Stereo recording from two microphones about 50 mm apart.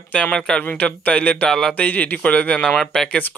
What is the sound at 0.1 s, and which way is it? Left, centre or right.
Speech, centre.